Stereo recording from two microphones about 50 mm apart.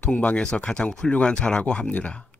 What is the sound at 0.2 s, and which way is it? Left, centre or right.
A man's voice, left.